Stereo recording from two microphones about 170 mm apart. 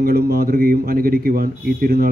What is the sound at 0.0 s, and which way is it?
A man's voice, 65° right (ahead or behind).